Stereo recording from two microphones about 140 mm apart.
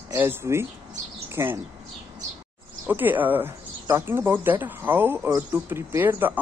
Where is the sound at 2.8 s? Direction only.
15° right (ahead or behind).